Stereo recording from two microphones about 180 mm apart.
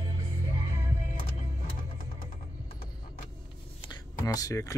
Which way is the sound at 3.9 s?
20° left (ahead or behind).